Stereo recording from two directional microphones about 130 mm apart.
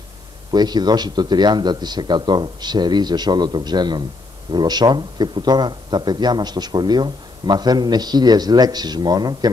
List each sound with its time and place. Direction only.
0.5 s a man's voice: 35° right (ahead or behind)